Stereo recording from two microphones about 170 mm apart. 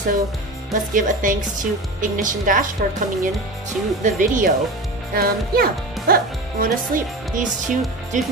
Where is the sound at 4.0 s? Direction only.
50° right (ahead or behind).